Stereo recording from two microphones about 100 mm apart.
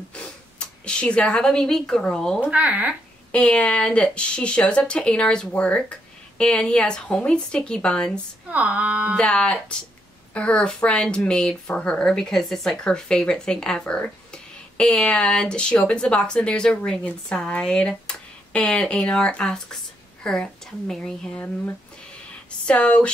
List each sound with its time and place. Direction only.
0.1 s speech: 10° left (ahead or behind)
2.4 s speech: 15° right (ahead or behind)
3.3 s a woman's voice: 10° left (ahead or behind)
8.5 s speech: 15° right (ahead or behind)
9.1 s a woman's voice: 10° left (ahead or behind)
22.7 s a woman's voice: 10° left (ahead or behind)